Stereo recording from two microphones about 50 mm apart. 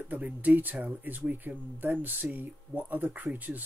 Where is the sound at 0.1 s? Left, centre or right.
Right.